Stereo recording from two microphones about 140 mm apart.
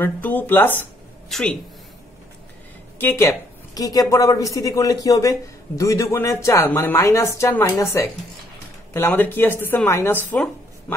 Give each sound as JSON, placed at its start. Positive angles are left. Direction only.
{"t": 0.0, "sound": "a woman's voice", "side_deg": 10}
{"t": 3.0, "sound": "a woman's voice", "side_deg": 15}